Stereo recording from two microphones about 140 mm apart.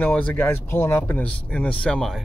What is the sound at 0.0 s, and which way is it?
Speech, 10° left (ahead or behind).